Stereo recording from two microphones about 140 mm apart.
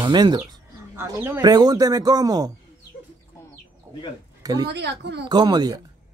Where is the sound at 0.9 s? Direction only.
20° right (ahead or behind).